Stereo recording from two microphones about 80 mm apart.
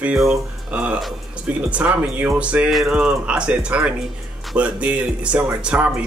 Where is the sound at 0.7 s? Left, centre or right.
Centre.